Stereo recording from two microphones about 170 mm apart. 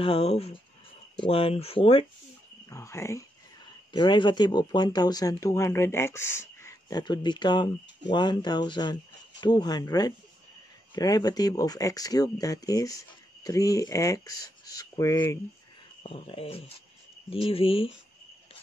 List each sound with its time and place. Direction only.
0.0 s speech: 35° left (ahead or behind)
2.7 s speech: 15° left (ahead or behind)
16.0 s speech: 35° left (ahead or behind)